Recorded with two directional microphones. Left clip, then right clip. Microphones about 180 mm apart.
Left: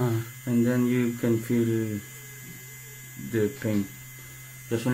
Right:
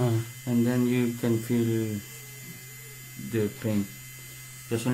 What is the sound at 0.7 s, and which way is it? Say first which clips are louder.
Speech: left 1 dB; 5° right (ahead or behind).